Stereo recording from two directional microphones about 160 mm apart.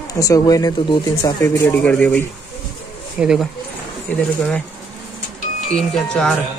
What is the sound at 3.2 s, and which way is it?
Speech, 5° right (ahead or behind).